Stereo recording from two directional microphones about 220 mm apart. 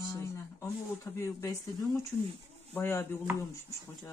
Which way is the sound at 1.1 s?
10° left (ahead or behind).